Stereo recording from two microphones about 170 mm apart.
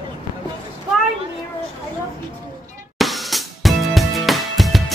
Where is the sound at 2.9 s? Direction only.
Centre (ahead or behind).